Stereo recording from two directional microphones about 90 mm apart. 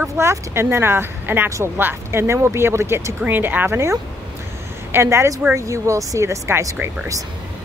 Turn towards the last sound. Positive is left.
turn(degrees=-35)  # may be behind; listen again after turning